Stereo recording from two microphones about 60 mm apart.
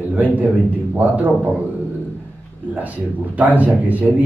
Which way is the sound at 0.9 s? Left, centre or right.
Right.